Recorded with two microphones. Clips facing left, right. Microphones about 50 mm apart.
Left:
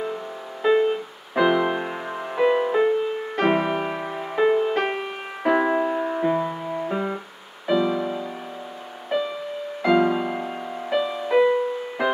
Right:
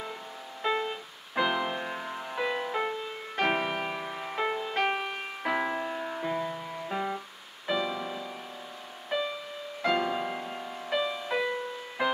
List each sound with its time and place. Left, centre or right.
0.6 s music: centre
5.4 s music: left
12.0 s music: centre